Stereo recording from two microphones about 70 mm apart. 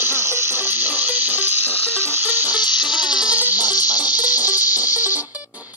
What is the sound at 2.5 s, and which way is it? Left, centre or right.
Electric toothbrush, left.